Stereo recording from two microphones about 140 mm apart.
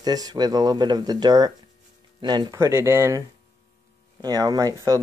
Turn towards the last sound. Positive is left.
turn(degrees=-25)  # may be behind; listen again after turning